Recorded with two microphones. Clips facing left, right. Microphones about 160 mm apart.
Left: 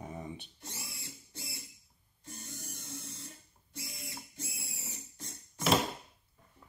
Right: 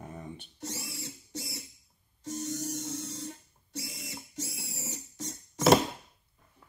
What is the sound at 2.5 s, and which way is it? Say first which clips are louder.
Music: right 12 dB; 90° right.